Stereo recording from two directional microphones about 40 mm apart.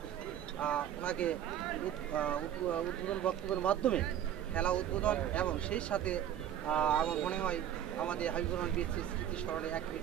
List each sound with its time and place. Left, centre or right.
0.6 s speech: left